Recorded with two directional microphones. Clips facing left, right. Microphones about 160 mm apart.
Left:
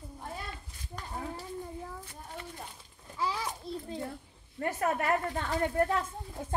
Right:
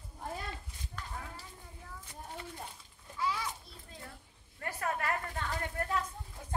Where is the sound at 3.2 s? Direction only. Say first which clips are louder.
Left 2 dB; 30° left (ahead or behind).